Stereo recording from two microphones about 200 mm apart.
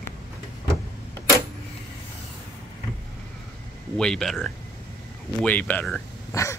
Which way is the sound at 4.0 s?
5° left (ahead or behind).